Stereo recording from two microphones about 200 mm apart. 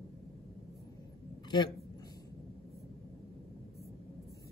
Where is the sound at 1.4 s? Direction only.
20° left (ahead or behind).